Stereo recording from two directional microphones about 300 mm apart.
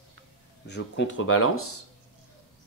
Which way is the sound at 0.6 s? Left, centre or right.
Left.